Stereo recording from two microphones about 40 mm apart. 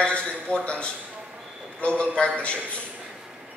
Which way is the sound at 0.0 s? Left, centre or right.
Left.